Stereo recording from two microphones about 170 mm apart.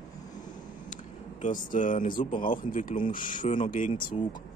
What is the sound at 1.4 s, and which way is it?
Speech, 50° left (ahead or behind).